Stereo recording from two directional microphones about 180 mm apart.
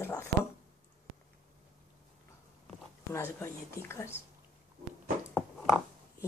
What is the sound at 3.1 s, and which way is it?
Speech, 15° left (ahead or behind).